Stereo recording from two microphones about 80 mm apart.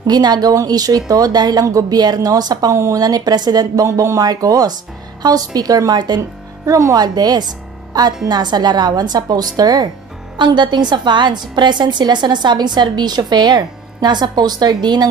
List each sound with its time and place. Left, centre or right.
0.0 s a woman's voice: right
2.7 s speech: right
3.0 s a woman's voice: right
3.8 s a woman's voice: right
6.6 s a woman's voice: right
10.3 s a woman's voice: right